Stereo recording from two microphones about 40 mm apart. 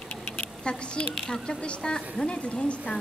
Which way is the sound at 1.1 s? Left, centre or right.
Centre.